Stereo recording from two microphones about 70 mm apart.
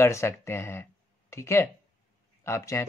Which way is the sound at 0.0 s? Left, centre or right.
Left.